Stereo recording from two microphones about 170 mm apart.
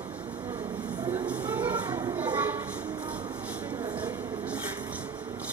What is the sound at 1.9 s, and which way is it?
Children playing, 25° right (ahead or behind).